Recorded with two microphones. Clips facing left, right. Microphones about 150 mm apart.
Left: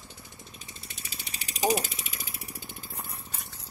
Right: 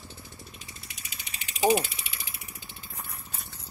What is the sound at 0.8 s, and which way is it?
Mechanisms, 35° left (ahead or behind).